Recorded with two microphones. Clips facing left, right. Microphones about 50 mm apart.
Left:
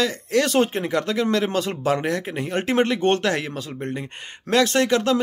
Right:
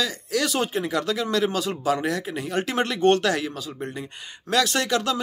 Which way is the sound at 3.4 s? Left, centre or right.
Left.